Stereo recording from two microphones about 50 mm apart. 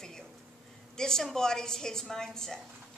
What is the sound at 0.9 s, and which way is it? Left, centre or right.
A woman's voice, centre.